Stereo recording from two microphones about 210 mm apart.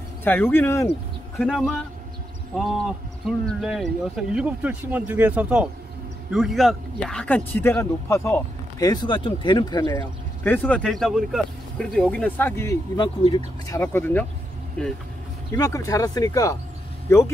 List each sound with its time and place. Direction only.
0.2 s speech: 10° left (ahead or behind)
1.3 s speech: centre (ahead or behind); by 10.0 s 20° left (ahead or behind)
10.4 s speech: 10° left (ahead or behind)
13.7 s speech: 10° left (ahead or behind)